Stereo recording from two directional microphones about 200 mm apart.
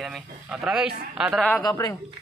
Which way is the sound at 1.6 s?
20° left (ahead or behind).